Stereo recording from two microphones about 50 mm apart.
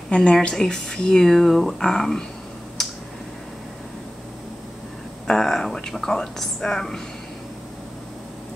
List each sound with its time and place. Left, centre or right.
0.1 s a woman's voice: centre
5.2 s speech: centre